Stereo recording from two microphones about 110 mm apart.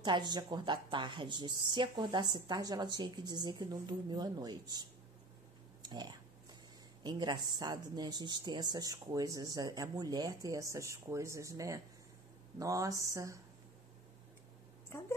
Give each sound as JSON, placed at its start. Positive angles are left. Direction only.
{"t": 0.0, "sound": "speech", "side_deg": -45}
{"t": 5.8, "sound": "a sound", "side_deg": -40}
{"t": 7.0, "sound": "a woman's voice", "side_deg": -40}